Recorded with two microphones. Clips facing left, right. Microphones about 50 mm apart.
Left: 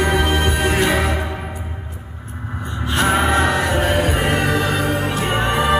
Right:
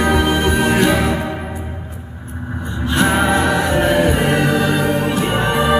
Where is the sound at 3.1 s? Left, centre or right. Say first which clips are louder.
Right 1 dB; left.